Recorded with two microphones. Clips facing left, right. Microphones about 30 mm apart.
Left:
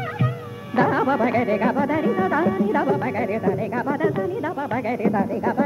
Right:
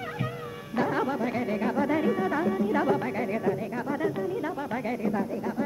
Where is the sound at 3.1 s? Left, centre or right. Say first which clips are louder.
Left 5 dB; centre.